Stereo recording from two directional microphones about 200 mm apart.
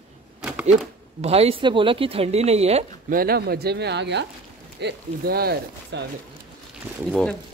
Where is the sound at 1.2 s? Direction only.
30° right (ahead or behind).